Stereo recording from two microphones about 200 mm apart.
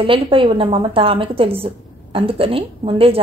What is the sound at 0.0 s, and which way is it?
A woman's voice, 25° right (ahead or behind).